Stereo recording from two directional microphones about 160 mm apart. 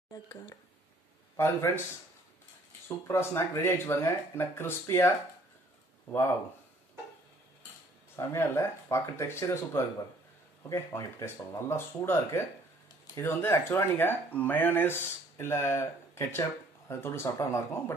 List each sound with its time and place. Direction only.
0.1 s a man's voice: 25° left (ahead or behind)
3.1 s speech: 15° left (ahead or behind)
8.2 s speech: 20° left (ahead or behind)